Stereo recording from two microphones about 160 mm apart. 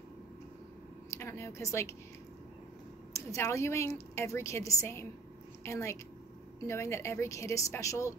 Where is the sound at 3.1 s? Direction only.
20° left (ahead or behind).